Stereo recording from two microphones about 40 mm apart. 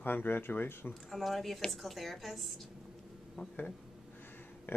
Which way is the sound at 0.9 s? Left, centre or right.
Centre.